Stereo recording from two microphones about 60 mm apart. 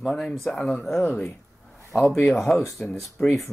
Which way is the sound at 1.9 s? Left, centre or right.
Centre.